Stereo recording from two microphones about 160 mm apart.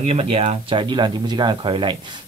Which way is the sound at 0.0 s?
40° right (ahead or behind).